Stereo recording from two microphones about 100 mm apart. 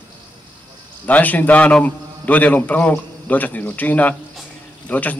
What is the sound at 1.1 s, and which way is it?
Speech, 15° left (ahead or behind).